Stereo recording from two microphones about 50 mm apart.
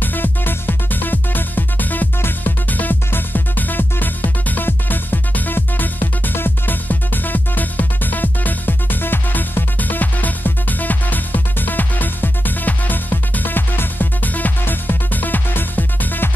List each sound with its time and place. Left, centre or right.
0.0 s music: left